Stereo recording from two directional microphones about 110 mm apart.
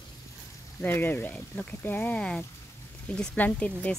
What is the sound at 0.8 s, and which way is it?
Speech, 15° left (ahead or behind).